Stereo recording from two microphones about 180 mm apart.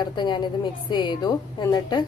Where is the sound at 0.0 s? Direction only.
25° left (ahead or behind).